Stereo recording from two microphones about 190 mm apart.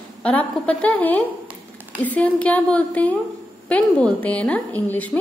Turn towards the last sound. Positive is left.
turn(degrees=10)  # may be behind; listen again after turning